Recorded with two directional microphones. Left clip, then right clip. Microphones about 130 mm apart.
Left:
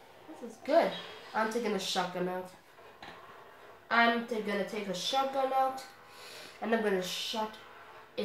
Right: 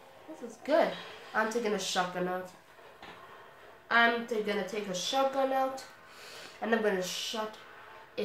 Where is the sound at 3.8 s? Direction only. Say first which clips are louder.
Right 1 dB; 25° right (ahead or behind).